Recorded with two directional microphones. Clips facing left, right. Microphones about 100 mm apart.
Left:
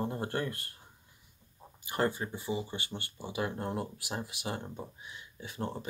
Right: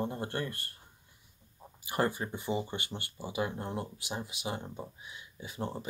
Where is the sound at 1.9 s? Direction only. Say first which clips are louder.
Even; 15° right (ahead or behind).